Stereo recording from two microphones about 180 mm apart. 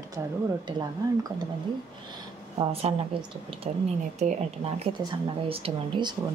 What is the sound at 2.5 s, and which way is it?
Speech, 35° right (ahead or behind).